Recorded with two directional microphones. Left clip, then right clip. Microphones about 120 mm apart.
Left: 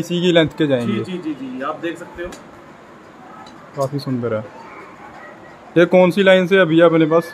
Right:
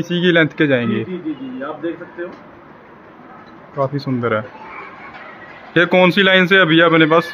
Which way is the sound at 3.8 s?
15° left (ahead or behind).